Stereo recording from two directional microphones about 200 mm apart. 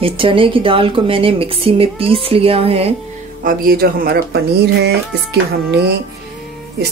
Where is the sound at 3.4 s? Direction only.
45° right (ahead or behind).